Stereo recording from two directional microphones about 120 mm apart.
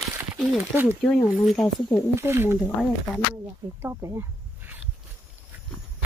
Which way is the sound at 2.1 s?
20° right (ahead or behind).